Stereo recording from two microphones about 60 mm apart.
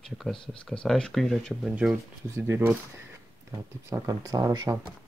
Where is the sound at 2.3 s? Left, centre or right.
Right.